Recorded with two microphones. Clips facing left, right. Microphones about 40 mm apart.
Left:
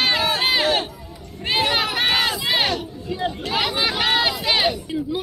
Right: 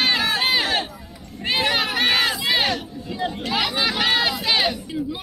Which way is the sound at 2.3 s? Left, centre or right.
Centre.